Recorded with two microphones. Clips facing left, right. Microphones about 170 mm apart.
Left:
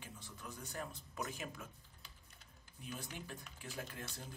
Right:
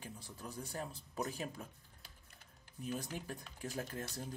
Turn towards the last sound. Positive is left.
turn(degrees=-40)  # may be behind; listen again after turning